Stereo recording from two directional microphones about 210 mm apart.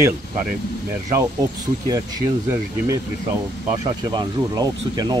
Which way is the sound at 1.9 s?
15° right (ahead or behind).